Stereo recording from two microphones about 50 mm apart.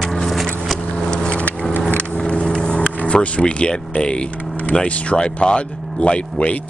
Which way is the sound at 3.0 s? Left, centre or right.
Left.